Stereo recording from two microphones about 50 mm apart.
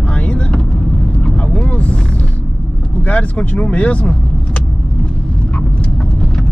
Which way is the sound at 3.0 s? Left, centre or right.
Left.